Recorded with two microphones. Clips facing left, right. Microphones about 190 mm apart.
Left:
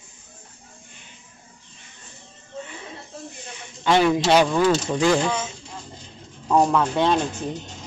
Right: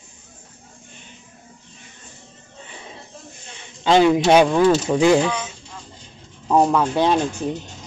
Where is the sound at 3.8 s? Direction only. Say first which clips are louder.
Right 4 dB; 20° right (ahead or behind).